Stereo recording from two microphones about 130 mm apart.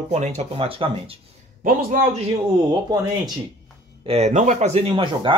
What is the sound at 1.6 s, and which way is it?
Speech, 90° right.